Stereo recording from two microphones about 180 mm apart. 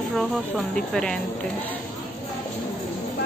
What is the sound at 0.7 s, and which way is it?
Speech, 5° left (ahead or behind).